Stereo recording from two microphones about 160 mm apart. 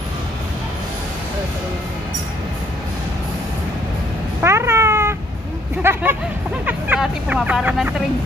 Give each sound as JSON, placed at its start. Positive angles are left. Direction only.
{"t": 4.4, "sound": "cat", "side_deg": -15}
{"t": 5.8, "sound": "speech", "side_deg": -15}